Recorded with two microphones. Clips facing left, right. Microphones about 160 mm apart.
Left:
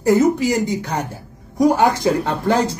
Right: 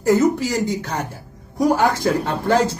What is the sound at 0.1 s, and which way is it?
Speech, 15° left (ahead or behind).